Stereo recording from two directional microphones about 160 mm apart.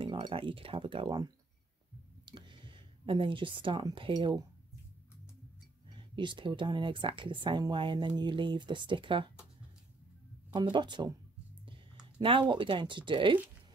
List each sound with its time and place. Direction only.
0.0 s speech: 35° right (ahead or behind)
5.9 s speech: 30° right (ahead or behind)
10.5 s speech: 30° right (ahead or behind)
12.2 s speech: 30° right (ahead or behind)